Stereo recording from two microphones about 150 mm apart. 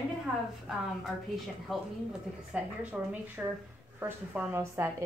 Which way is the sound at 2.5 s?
10° right (ahead or behind).